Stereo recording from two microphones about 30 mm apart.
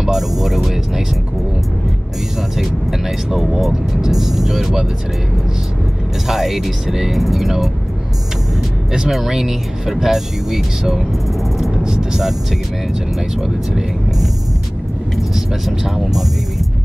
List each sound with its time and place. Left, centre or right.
0.0 s music: centre
2.5 s vehicle: centre
6.2 s speech: centre
9.1 s speech: centre
15.3 s speech: centre